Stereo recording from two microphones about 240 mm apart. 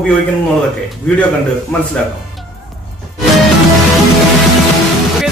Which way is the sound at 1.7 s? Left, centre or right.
Centre.